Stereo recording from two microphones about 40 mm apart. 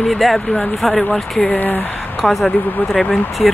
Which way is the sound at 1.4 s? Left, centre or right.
Left.